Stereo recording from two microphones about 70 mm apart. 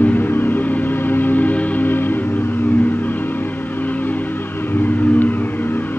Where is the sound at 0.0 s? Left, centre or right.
Left.